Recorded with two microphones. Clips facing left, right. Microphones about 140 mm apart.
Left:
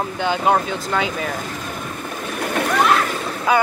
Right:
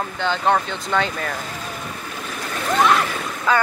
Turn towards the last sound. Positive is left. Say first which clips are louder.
# left 2 dB
turn(degrees=15)  # may be behind; listen again after turning